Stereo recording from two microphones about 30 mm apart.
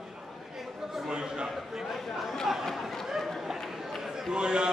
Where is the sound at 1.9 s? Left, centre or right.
Centre.